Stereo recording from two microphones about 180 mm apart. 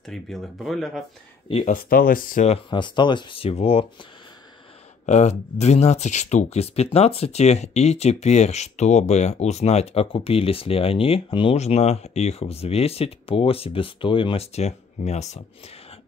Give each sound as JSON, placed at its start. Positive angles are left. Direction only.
{"t": 0.0, "sound": "speech", "side_deg": 0}
{"t": 1.5, "sound": "speech", "side_deg": 40}
{"t": 1.8, "sound": "speech", "side_deg": 55}
{"t": 5.0, "sound": "speech", "side_deg": 40}